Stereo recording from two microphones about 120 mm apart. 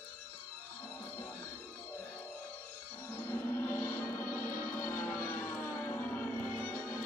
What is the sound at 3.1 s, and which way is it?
Music, 15° left (ahead or behind).